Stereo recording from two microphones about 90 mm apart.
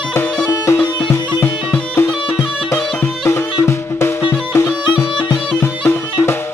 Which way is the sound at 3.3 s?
30° left (ahead or behind).